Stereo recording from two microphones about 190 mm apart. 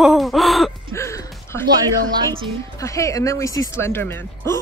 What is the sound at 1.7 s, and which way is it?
Speech, 25° right (ahead or behind).